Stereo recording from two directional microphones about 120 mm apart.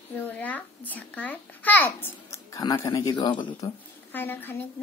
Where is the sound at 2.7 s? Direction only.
30° left (ahead or behind).